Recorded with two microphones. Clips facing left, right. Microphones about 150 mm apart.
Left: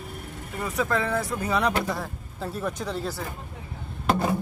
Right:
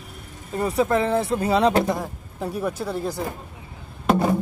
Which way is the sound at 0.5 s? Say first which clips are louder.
Right 6 dB; 30° right (ahead or behind).